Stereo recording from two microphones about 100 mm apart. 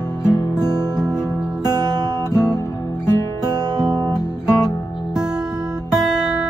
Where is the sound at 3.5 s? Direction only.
40° right (ahead or behind).